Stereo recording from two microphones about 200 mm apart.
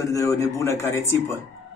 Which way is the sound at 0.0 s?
15° left (ahead or behind).